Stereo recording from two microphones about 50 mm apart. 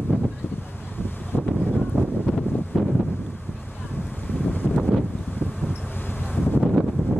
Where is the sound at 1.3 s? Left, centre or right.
Centre.